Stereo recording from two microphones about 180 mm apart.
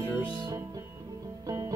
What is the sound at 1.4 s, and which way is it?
Music, 20° right (ahead or behind).